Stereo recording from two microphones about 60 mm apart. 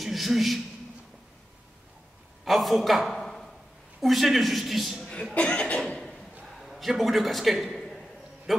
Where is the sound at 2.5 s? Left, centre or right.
Centre.